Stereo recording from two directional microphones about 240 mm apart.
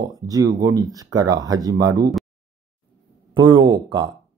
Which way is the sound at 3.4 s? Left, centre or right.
Centre.